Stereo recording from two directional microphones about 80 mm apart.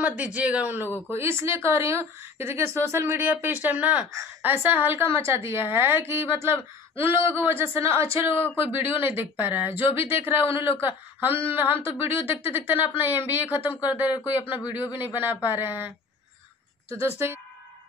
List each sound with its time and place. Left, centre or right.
0.0 s speech: centre
0.8 s speech: left
1.1 s a woman's voice: right